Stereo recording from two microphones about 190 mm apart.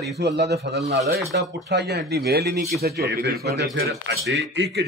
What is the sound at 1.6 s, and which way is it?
Speech, 60° right (ahead or behind).